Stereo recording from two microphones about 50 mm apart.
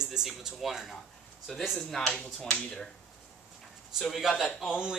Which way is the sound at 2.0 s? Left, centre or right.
Left.